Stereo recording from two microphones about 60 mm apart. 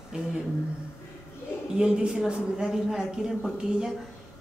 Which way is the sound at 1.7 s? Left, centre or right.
Centre.